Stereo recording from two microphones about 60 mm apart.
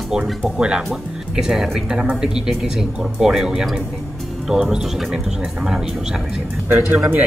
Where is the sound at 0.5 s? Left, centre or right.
Centre.